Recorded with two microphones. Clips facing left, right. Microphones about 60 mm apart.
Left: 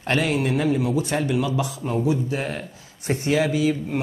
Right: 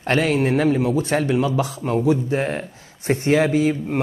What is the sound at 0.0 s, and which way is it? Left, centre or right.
Speech, right.